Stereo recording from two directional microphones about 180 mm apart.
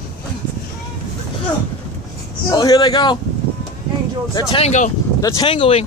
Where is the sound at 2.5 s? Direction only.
25° left (ahead or behind).